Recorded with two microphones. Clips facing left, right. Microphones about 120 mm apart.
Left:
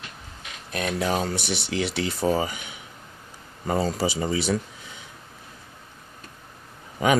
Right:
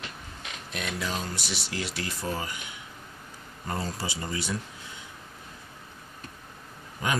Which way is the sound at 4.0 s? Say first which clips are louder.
Left 9 dB; 85° left.